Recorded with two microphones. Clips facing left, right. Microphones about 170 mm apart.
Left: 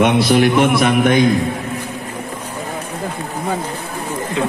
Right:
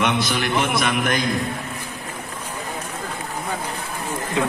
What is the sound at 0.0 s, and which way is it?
A man's voice, 55° left (ahead or behind).